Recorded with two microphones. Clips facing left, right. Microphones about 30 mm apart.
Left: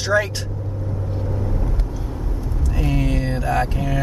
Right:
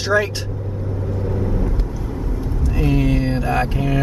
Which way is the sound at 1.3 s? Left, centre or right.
Centre.